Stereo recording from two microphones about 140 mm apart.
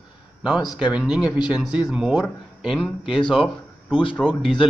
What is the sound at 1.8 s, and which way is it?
Speech, 5° right (ahead or behind).